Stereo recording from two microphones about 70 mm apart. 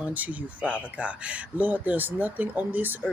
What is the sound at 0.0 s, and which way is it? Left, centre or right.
Speech, right.